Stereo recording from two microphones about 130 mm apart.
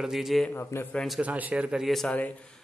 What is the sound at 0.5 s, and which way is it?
Speech, 15° left (ahead or behind).